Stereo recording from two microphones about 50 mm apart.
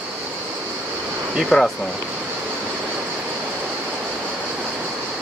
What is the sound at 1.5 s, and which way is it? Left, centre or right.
Speech, centre.